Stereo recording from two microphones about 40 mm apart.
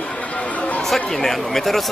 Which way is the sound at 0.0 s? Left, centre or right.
Left.